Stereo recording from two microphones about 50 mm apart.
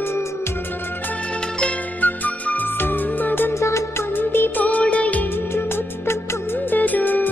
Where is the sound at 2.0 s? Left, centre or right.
Left.